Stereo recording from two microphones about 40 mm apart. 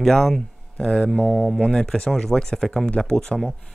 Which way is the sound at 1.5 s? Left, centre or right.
Centre.